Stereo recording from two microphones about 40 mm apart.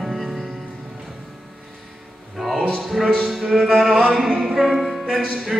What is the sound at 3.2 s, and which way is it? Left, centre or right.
Music, centre.